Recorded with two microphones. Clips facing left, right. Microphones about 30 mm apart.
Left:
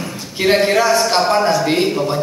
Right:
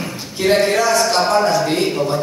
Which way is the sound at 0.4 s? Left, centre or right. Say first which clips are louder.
Left 1 dB; centre.